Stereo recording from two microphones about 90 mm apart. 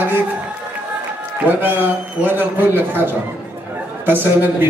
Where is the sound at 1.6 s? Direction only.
20° right (ahead or behind).